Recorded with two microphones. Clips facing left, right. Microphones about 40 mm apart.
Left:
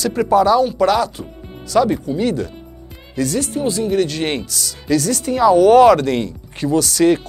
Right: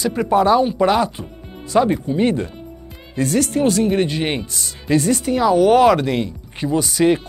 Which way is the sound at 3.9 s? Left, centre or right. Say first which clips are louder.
Left 1 dB; right.